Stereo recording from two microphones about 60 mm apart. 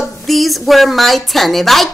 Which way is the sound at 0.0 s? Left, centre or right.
Centre.